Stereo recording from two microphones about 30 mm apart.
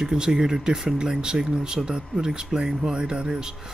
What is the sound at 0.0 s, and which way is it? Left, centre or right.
Speech, right.